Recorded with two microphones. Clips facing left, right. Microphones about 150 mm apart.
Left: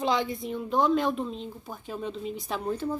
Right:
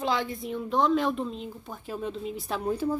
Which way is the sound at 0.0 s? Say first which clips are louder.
Left 1 dB; centre (ahead or behind).